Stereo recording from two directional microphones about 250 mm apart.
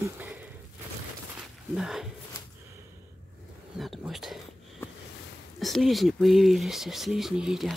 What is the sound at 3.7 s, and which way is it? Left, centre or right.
Speech, centre.